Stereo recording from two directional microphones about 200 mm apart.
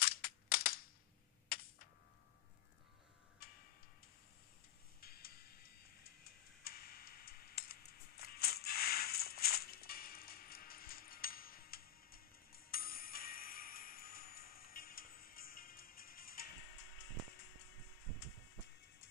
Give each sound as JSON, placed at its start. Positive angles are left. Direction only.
{"t": 0.0, "sound": "a sound", "side_deg": 50}
{"t": 3.4, "sound": "tick-tock", "side_deg": 50}
{"t": 5.0, "sound": "music", "side_deg": 50}
{"t": 6.6, "sound": "tick-tock", "side_deg": 50}